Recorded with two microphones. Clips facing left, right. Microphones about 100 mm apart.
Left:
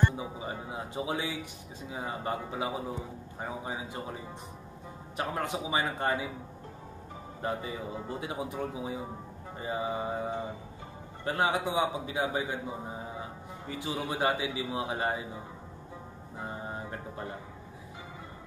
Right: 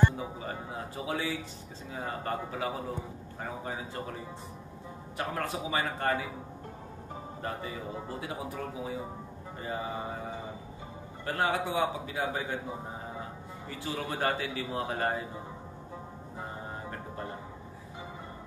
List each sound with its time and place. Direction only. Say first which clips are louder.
0.2 s a man's voice: even; 15° left (ahead or behind)
8.2 s a man's voice: left 2 dB; 20° left (ahead or behind)
13.7 s a man's voice: left 1 dB; 15° left (ahead or behind)